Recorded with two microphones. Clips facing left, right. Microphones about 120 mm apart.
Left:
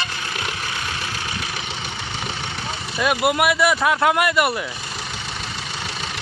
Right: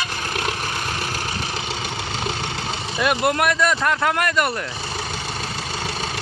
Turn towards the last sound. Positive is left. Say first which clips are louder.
# left 2 dB
turn(degrees=10)  # may be behind; listen again after turning